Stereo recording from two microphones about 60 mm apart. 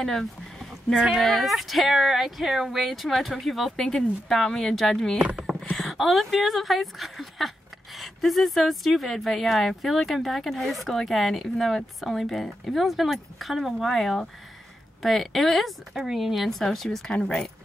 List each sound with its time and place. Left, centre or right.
0.0 s speech: centre
5.2 s a sound: centre
5.8 s speech: centre